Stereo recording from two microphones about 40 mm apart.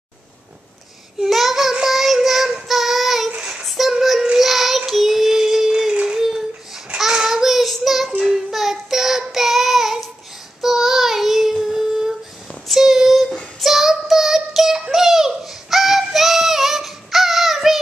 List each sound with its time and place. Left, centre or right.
1.2 s child singing: centre
3.3 s child singing: right
3.6 s child singing: centre
5.7 s a sound: centre
7.0 s child singing: centre
12.4 s child singing: centre
12.8 s child singing: centre